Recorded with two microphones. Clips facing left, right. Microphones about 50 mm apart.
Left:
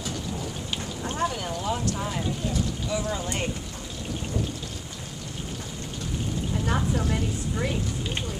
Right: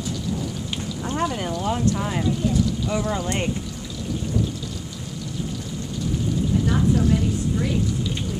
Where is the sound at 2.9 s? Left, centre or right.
Right.